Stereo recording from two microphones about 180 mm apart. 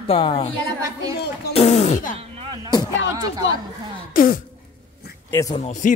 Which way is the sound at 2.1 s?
30° right (ahead or behind).